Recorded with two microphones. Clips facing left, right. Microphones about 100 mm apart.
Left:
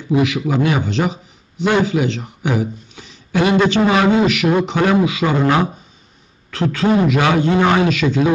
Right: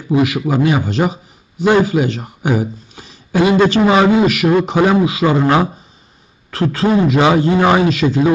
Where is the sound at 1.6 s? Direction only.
10° right (ahead or behind).